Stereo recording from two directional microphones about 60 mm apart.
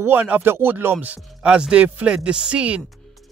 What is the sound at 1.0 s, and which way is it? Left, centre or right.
Speech, right.